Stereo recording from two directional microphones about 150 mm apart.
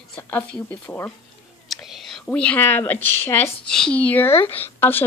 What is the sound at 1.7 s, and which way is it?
Whispering, centre (ahead or behind).